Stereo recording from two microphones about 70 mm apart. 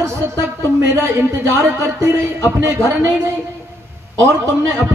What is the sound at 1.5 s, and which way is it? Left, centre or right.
A woman's voice, right.